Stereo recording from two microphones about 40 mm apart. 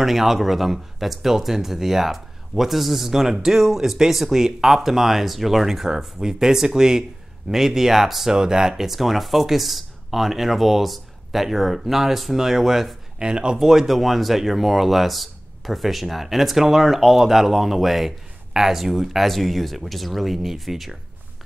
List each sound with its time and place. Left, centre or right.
0.0 s speech: centre
13.2 s speech: right
13.7 s speech: centre